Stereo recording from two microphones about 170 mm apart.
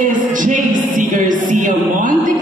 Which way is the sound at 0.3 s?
50° right (ahead or behind).